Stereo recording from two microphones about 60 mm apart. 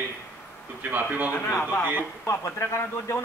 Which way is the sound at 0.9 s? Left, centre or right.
Right.